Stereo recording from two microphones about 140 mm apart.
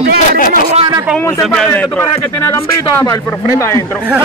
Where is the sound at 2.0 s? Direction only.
20° left (ahead or behind).